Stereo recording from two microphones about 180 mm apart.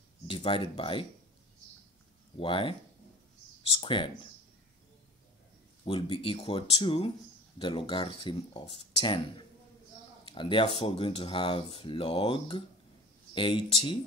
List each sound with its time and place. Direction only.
0.3 s speech: 30° left (ahead or behind)
2.3 s speech: 30° left (ahead or behind)
3.8 s speech: 30° left (ahead or behind)
5.9 s speech: 30° left (ahead or behind)
10.2 s speech: 30° left (ahead or behind)